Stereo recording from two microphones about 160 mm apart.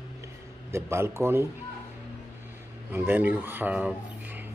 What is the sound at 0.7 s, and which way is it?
Speech, 15° right (ahead or behind).